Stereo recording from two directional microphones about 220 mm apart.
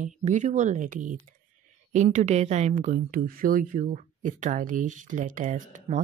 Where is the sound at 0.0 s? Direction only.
35° right (ahead or behind).